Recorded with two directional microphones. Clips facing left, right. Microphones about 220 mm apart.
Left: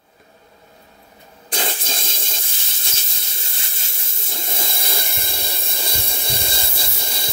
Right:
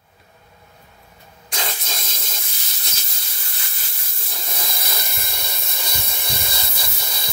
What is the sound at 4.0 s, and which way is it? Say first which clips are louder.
Hiss: left 4 dB; 25° left (ahead or behind).